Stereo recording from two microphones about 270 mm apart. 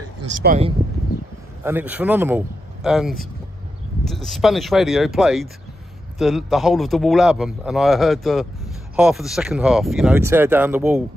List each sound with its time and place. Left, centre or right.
0.4 s speech: right
1.6 s a man's voice: centre